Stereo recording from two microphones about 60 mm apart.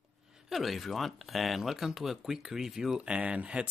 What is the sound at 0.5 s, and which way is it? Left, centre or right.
Speech, centre.